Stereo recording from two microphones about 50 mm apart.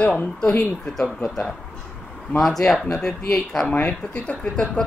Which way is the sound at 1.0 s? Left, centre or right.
Centre.